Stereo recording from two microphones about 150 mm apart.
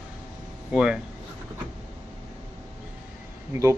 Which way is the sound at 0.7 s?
5° right (ahead or behind).